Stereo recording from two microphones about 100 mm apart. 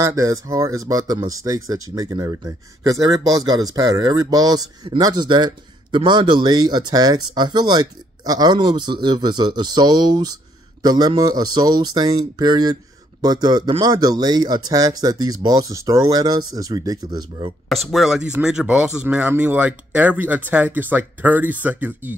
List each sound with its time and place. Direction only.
0.0 s speech: 35° right (ahead or behind)
17.9 s speech: 5° right (ahead or behind)